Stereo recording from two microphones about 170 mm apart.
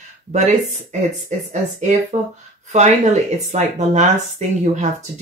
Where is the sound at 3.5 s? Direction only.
45° right (ahead or behind).